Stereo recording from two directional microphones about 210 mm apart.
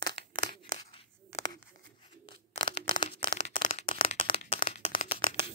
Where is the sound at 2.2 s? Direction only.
25° left (ahead or behind).